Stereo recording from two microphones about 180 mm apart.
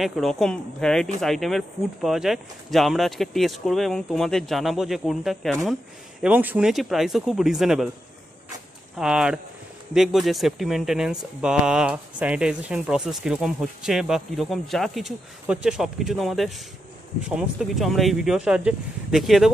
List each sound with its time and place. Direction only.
0.0 s speech: centre (ahead or behind)
8.9 s speech: 5° right (ahead or behind)